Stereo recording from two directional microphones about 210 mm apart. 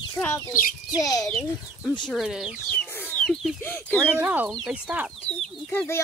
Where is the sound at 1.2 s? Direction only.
Centre (ahead or behind).